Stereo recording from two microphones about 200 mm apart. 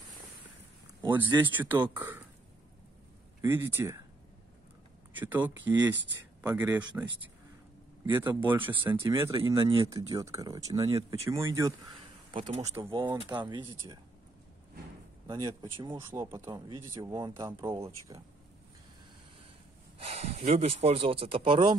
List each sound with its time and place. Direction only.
1.0 s speech: 10° right (ahead or behind)
3.4 s speech: 10° right (ahead or behind)
5.2 s speech: 10° right (ahead or behind)
8.1 s speech: 10° right (ahead or behind)
9.0 s speech: 20° right (ahead or behind)
12.9 s speech: 25° right (ahead or behind)
15.2 s speech: 15° right (ahead or behind)
20.0 s speech: 30° right (ahead or behind)